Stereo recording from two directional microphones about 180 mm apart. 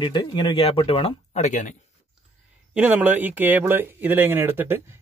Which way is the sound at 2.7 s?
5° right (ahead or behind).